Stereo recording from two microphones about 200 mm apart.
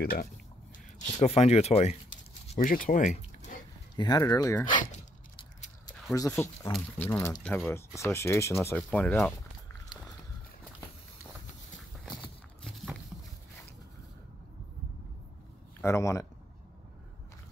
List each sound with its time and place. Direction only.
0.0 s speech: 50° left (ahead or behind)
0.9 s speech: 35° left (ahead or behind)
2.4 s a sound: 40° left (ahead or behind)
3.9 s speech: 20° left (ahead or behind)
4.9 s a sound: 35° left (ahead or behind)
6.1 s speech: 15° left (ahead or behind)
7.4 s speech: 5° left (ahead or behind)
7.7 s speech: 15° left (ahead or behind)
12.6 s a sound: centre (ahead or behind)
15.8 s speech: 15° left (ahead or behind)